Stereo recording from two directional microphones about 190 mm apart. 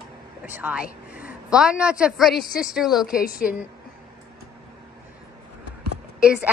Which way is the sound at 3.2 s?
50° left (ahead or behind).